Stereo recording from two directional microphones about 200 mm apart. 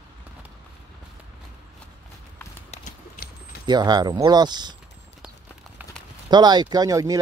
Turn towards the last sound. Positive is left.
turn(degrees=-15)  # may be behind; listen again after turning